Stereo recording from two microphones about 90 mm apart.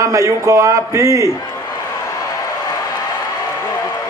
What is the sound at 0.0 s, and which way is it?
A man's voice, 35° right (ahead or behind).